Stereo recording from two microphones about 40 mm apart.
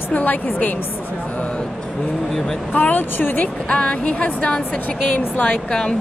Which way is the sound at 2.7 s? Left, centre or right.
Left.